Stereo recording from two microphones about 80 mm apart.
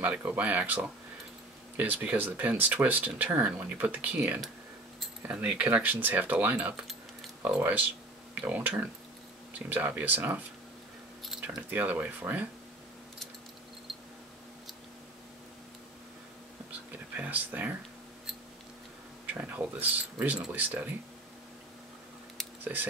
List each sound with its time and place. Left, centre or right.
0.0 s speech: centre
6.8 s keys jangling: centre
7.4 s speech: right
11.7 s speech: centre
17.2 s speech: right
19.2 s speech: right
22.6 s speech: right